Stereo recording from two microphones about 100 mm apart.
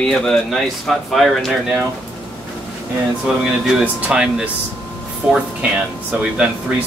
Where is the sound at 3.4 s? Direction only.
10° right (ahead or behind).